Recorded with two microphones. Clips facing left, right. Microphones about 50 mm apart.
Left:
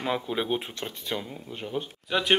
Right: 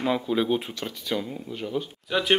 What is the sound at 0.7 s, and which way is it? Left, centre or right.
Speech, left.